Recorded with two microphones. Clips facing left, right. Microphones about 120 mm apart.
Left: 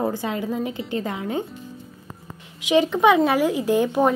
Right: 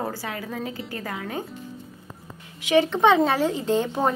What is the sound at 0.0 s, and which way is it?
A woman's voice, 20° left (ahead or behind).